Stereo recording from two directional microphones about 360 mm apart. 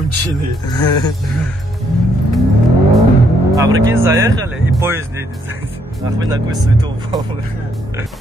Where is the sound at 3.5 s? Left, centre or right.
Centre.